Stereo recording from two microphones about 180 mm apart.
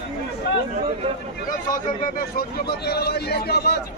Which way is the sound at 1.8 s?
50° left (ahead or behind).